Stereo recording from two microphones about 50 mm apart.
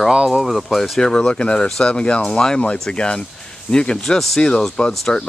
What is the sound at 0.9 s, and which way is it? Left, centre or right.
Speech, centre.